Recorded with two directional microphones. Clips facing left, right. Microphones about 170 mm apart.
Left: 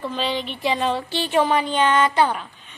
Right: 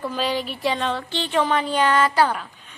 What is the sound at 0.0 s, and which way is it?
Speech, 10° right (ahead or behind).